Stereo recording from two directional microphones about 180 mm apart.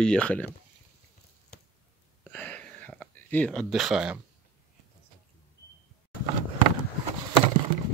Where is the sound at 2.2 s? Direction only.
10° left (ahead or behind).